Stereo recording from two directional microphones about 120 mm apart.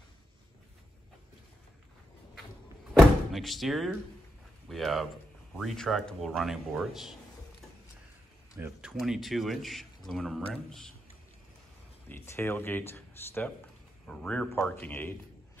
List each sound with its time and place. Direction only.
2.9 s door: centre (ahead or behind)
4.6 s speech: centre (ahead or behind)
8.8 s speech: 5° right (ahead or behind)
12.1 s speech: 20° left (ahead or behind)